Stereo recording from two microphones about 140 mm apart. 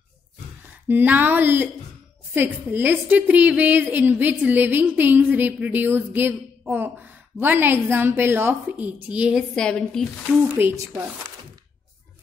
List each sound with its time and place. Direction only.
0.8 s a woman's voice: 15° right (ahead or behind)
9.6 s speech: 5° left (ahead or behind)
10.5 s a woman's voice: 15° right (ahead or behind)